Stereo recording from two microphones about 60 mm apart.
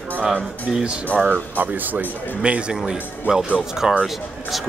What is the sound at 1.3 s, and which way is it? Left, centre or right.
Speech, right.